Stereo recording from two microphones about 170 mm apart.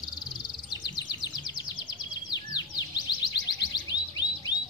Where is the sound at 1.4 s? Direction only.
25° left (ahead or behind).